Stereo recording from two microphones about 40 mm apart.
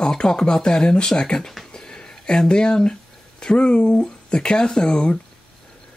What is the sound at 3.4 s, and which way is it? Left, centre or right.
Speech, left.